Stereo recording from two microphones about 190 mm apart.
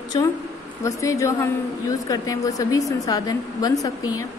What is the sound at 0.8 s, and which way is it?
A woman's voice, 15° left (ahead or behind).